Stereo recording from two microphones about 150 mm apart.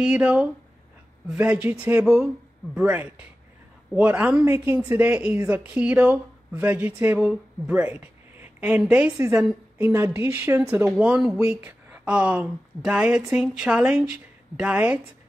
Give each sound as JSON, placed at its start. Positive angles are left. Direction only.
{"t": 0.0, "sound": "speech", "side_deg": -5}